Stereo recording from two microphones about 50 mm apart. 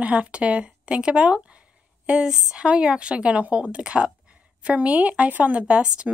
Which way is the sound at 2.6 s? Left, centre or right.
Right.